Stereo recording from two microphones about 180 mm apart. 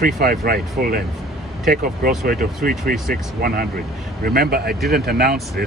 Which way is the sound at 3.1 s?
55° right (ahead or behind).